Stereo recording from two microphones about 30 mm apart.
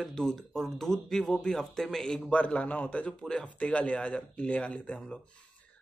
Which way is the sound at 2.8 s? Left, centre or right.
Left.